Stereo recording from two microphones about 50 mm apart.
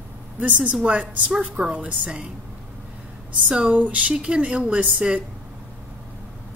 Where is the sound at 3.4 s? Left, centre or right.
Centre.